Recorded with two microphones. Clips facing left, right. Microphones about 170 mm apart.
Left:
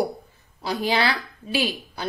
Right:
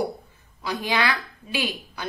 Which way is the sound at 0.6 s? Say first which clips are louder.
Left 2 dB; 35° left (ahead or behind).